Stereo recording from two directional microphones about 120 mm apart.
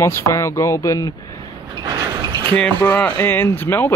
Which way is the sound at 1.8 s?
35° right (ahead or behind).